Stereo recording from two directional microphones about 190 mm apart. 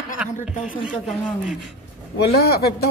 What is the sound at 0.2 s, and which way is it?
Speech, 5° right (ahead or behind).